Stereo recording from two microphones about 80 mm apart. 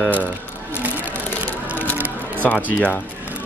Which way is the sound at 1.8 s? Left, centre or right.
Left.